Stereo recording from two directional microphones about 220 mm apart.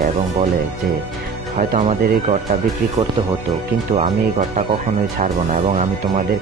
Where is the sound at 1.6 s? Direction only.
35° right (ahead or behind).